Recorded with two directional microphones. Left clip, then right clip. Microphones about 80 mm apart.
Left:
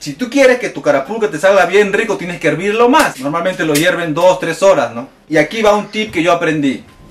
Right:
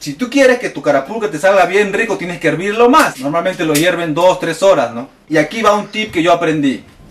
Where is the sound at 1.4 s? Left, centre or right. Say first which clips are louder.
Left 1 dB; centre.